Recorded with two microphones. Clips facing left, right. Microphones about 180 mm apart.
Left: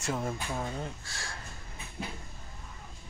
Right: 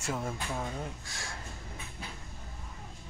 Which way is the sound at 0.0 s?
Centre (ahead or behind).